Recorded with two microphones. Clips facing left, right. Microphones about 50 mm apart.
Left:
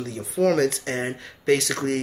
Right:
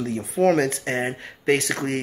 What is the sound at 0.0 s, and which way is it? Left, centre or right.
Speech, right.